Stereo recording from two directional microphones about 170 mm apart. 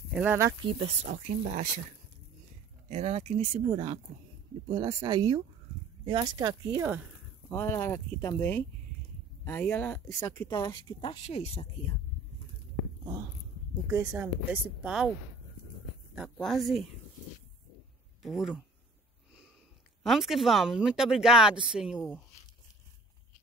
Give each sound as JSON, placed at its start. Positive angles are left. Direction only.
{"t": 0.1, "sound": "speech", "side_deg": -10}
{"t": 0.6, "sound": "speech", "side_deg": -30}
{"t": 1.0, "sound": "speech", "side_deg": -45}
{"t": 2.9, "sound": "speech", "side_deg": -40}
{"t": 7.5, "sound": "speech", "side_deg": 15}
{"t": 10.5, "sound": "a woman's voice", "side_deg": 25}
{"t": 13.9, "sound": "speech", "side_deg": -10}
{"t": 16.2, "sound": "speech", "side_deg": 0}
{"t": 18.2, "sound": "speech", "side_deg": 0}
{"t": 20.0, "sound": "speech", "side_deg": 0}